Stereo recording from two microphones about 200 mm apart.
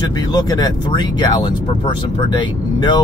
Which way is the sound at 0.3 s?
20° left (ahead or behind).